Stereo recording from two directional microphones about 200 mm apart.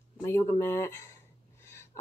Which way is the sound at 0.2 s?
15° left (ahead or behind).